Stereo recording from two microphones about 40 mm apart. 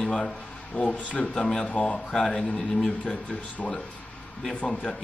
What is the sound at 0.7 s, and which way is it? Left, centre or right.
Speech, left.